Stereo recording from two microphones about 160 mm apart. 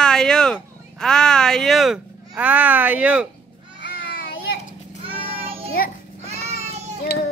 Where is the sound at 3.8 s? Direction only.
85° left.